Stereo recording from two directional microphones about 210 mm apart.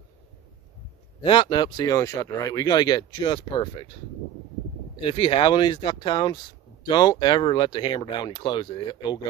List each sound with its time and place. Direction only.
1.2 s speech: 25° left (ahead or behind)
5.0 s speech: 25° left (ahead or behind)